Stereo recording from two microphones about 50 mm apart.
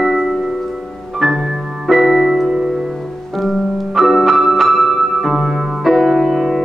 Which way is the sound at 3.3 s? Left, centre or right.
Centre.